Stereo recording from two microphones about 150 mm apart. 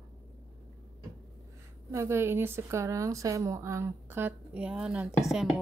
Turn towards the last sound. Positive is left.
turn(degrees=0)  # may be behind; listen again after turning